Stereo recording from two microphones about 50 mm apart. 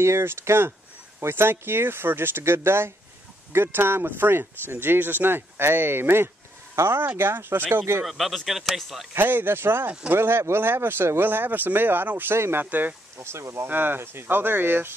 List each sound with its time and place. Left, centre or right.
0.0 s speech: right
6.7 s a sound: right
7.2 s speech: right
7.7 s speech: right
8.0 s speech: centre
9.1 s speech: right
12.4 s speech: right
12.6 s speech: right
13.2 s speech: right
13.7 s speech: right